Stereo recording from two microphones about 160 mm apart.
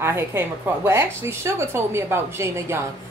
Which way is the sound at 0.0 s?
15° right (ahead or behind).